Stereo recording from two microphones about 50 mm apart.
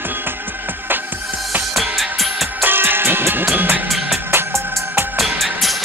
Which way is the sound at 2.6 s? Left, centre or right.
Right.